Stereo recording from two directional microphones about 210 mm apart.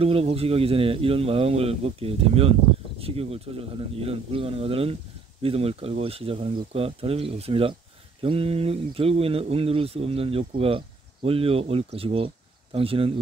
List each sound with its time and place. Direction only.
0.0 s speech: 25° right (ahead or behind)